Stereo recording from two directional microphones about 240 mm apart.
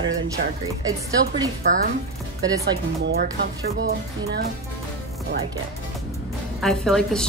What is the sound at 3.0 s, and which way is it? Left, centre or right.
Speech, right.